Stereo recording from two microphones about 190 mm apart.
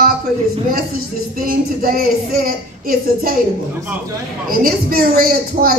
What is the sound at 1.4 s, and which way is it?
A woman's voice, 50° right (ahead or behind).